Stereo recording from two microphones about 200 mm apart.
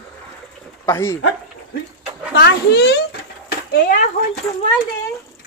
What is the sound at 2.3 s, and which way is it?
A child's voice, 55° left (ahead or behind).